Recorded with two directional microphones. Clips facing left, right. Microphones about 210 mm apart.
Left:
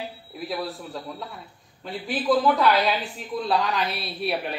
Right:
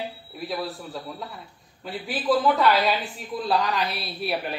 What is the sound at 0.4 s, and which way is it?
A woman's voice, centre (ahead or behind).